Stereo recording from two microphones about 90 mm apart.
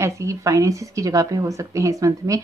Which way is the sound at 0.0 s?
35° right (ahead or behind).